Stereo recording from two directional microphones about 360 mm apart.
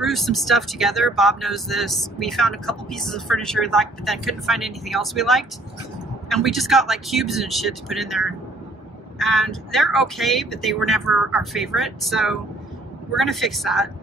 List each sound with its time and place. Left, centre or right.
0.0 s speech: centre